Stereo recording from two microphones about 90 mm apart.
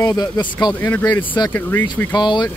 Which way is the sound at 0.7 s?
20° left (ahead or behind).